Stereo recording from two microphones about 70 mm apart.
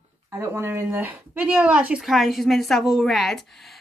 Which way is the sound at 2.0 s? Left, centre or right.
Centre.